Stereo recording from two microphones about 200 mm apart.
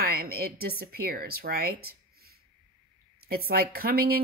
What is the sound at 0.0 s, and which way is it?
A woman's voice, 50° right (ahead or behind).